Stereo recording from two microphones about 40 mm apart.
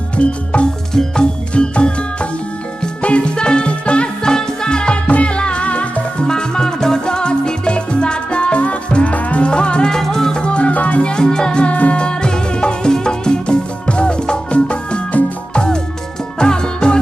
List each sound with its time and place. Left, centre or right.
0.1 s music: left
0.9 s music: centre
1.5 s music: left
5.0 s music: left
6.2 s music: centre
9.8 s music: centre
10.4 s music: left
11.1 s music: centre
11.6 s music: left
12.0 s music: left